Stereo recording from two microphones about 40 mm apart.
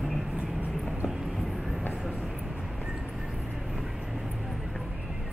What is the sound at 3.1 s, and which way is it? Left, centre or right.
Music, centre.